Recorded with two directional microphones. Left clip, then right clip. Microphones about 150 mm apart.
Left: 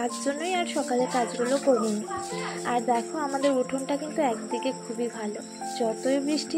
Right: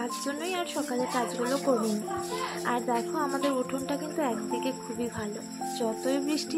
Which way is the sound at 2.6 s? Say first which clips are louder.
Left 5 dB; centre (ahead or behind).